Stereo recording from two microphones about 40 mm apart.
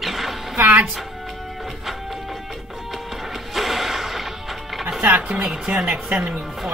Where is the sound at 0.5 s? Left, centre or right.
Right.